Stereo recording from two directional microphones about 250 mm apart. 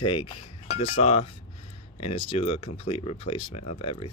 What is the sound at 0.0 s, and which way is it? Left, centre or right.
Speech, left.